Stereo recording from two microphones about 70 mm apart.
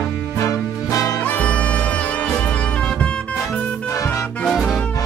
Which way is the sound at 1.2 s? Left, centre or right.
Left.